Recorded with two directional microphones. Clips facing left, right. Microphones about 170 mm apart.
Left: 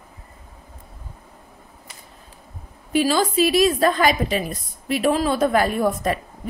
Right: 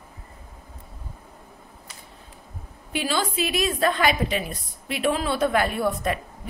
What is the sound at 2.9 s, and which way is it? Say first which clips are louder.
A woman's voice: left 7 dB; 40° left (ahead or behind).